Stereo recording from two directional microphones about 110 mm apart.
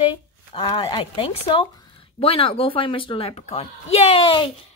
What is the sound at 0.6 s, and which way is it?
Speech, 45° left (ahead or behind).